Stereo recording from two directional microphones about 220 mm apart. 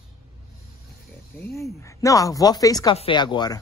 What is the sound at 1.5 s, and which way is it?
Speech, 15° left (ahead or behind).